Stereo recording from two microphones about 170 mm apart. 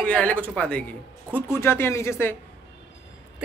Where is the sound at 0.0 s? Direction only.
5° left (ahead or behind).